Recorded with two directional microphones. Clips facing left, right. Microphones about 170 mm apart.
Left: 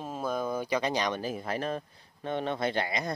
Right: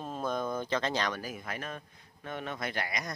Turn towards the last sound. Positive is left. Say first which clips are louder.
# left 6 dB
turn(degrees=25)  # may be behind; listen again after turning